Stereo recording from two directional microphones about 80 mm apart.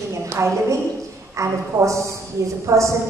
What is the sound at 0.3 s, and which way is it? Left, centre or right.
A woman's voice, right.